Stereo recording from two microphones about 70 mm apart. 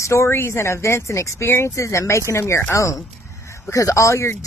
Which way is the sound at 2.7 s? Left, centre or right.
Left.